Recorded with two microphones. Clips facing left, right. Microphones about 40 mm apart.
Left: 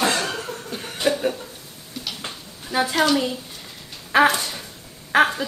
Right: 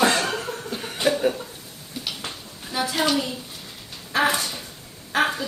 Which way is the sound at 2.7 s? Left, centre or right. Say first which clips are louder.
Left 4 dB; centre.